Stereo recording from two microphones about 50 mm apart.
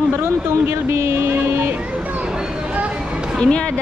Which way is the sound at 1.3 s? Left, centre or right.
Right.